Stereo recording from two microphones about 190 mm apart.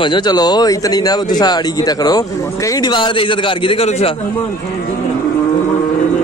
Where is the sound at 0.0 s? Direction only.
25° left (ahead or behind).